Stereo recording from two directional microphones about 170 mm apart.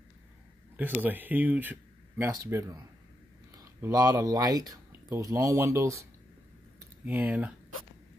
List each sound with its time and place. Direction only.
0.7 s speech: 10° right (ahead or behind)